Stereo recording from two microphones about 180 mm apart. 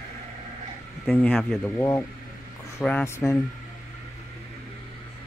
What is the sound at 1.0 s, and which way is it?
Speech, centre (ahead or behind).